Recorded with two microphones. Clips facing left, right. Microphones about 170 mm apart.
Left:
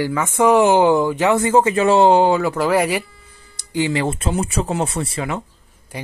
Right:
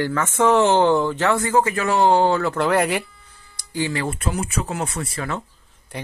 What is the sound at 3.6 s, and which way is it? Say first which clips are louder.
Speech: left 5 dB; 20° left (ahead or behind).